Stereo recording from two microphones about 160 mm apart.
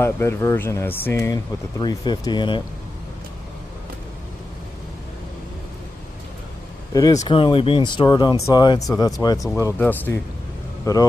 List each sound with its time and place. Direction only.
0.0 s speech: 15° left (ahead or behind)
6.9 s speech: 25° left (ahead or behind)